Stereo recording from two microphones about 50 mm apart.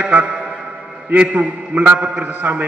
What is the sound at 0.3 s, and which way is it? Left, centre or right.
Music, centre.